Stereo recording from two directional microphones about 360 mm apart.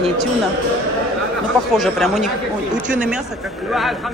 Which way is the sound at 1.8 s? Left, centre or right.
Centre.